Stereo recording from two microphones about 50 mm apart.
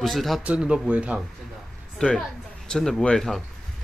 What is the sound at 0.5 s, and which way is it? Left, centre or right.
Speech, centre.